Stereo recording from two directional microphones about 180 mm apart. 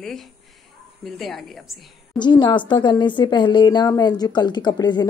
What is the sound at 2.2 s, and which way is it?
A woman's voice, 25° left (ahead or behind).